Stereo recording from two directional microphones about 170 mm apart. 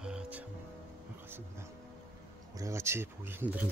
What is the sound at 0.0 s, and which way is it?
Music, 5° right (ahead or behind).